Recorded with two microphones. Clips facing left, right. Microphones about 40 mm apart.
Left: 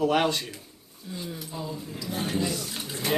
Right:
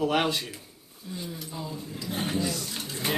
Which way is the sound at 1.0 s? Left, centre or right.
Centre.